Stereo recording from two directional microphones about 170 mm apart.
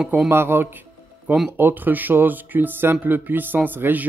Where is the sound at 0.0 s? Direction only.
10° right (ahead or behind).